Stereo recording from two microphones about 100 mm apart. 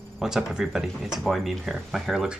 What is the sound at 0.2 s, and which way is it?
Speech, 5° right (ahead or behind).